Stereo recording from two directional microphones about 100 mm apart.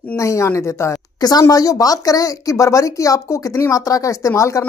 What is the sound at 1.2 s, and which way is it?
Speech, 40° left (ahead or behind).